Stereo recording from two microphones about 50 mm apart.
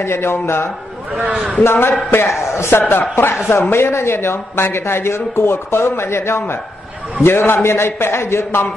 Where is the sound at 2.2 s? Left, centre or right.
Left.